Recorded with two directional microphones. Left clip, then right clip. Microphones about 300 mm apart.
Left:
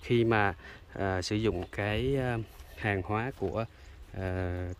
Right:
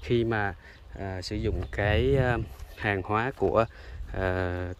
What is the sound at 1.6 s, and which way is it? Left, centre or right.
Speech, centre.